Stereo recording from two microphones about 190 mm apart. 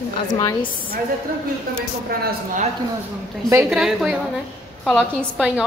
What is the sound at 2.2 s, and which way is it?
Speech, 45° right (ahead or behind).